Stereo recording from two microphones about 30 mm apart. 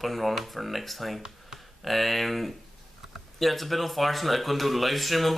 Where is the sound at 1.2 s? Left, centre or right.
Centre.